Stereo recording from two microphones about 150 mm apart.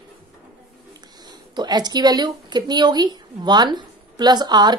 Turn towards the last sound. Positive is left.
turn(degrees=-30)  # may be behind; listen again after turning